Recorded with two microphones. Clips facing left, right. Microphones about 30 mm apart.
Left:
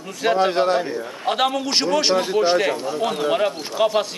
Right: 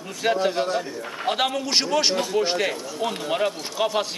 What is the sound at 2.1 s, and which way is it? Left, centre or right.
Speech, left.